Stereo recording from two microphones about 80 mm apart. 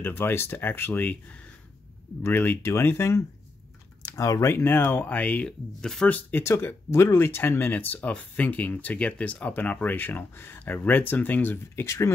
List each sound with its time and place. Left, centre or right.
0.0 s speech: left
4.0 s speech: left; by 6.0 s centre
6.0 s speech: centre
6.4 s speech: left